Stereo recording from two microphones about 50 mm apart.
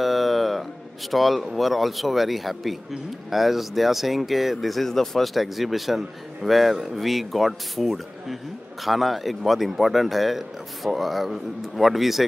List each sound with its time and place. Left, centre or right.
0.0 s music: centre
1.1 s speech: centre